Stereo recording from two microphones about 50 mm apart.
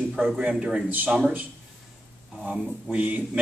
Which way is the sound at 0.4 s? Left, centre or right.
Right.